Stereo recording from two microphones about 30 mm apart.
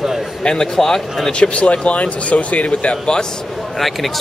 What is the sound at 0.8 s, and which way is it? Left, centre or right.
Speech, centre.